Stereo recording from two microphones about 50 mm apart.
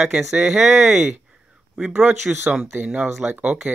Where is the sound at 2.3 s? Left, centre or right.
Right.